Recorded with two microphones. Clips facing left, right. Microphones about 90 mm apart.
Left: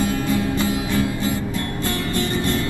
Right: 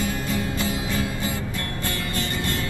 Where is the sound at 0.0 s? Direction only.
20° left (ahead or behind).